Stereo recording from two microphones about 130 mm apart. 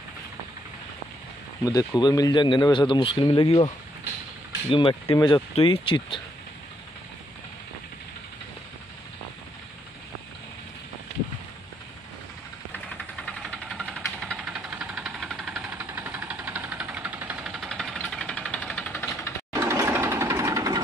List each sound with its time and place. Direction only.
1.6 s speech: 25° left (ahead or behind)
5.0 s speech: 30° left (ahead or behind)
5.5 s speech: 40° left (ahead or behind)
12.7 s vehicle: 15° left (ahead or behind)
13.4 s engine: centre (ahead or behind)
14.3 s vehicle: 10° right (ahead or behind)
15.6 s vehicle: 15° right (ahead or behind); by 19.3 s 15° left (ahead or behind)
19.7 s jackhammer: 20° right (ahead or behind)